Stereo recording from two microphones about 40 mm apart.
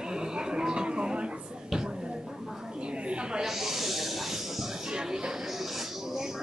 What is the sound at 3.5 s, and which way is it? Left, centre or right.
Snake, centre.